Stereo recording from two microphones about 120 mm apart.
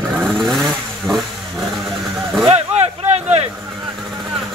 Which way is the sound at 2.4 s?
60° right (ahead or behind).